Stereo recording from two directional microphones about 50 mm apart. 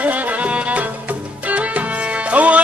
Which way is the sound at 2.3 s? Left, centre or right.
Right.